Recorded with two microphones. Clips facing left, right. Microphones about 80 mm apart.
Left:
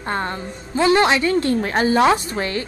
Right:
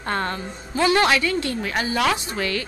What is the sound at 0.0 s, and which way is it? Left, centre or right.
Speech, centre.